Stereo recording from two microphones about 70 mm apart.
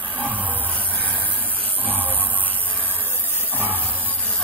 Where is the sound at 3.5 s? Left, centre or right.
Left.